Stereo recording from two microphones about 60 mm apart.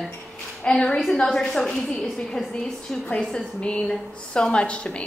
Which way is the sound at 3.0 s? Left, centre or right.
Centre.